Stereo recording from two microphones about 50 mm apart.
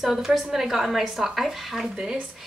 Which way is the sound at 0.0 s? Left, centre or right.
Centre.